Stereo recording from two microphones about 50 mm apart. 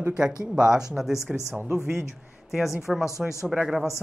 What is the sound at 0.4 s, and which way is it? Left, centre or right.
A woman's voice, centre.